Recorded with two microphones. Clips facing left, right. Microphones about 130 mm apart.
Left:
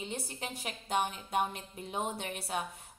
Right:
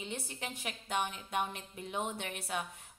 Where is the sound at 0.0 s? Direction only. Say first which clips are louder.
Left 2 dB; 35° left (ahead or behind).